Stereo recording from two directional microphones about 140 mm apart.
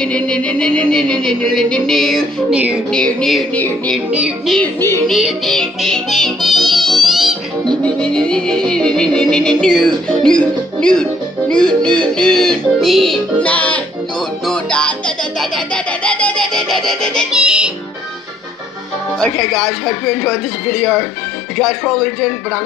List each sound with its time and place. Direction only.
0.0 s music: 5° left (ahead or behind)
2.5 s music: 10° right (ahead or behind)
2.9 s music: 5° left (ahead or behind)
3.5 s speech: 10° left (ahead or behind)
4.1 s music: 10° right (ahead or behind)
4.6 s speech: 15° left (ahead or behind)
5.0 s music: centre (ahead or behind)
17.3 s music: 5° right (ahead or behind)
19.1 s music: 5° left (ahead or behind)